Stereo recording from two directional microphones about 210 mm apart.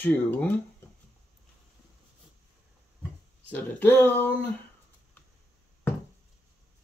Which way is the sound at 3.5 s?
10° left (ahead or behind).